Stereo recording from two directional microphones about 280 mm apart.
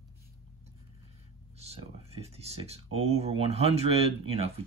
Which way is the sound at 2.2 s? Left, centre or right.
Right.